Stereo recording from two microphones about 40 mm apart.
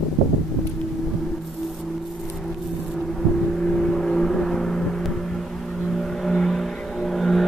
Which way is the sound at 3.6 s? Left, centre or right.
Centre.